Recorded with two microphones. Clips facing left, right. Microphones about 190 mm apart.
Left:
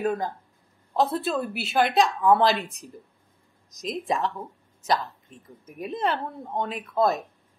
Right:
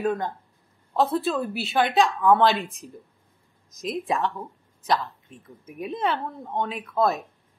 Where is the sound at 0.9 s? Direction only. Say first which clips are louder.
Right 1 dB; centre (ahead or behind).